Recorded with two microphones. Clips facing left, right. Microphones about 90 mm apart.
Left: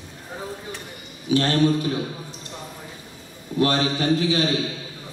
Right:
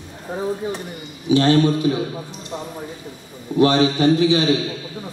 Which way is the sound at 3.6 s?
20° right (ahead or behind).